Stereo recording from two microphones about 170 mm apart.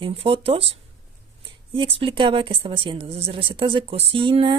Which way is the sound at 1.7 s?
30° right (ahead or behind).